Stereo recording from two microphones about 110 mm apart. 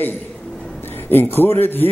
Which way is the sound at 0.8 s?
20° left (ahead or behind).